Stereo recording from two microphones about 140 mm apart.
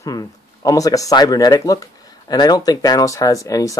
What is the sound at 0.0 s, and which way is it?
Speech, 25° left (ahead or behind).